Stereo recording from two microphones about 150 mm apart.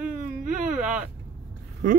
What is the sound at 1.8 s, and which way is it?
Speech, 60° right (ahead or behind).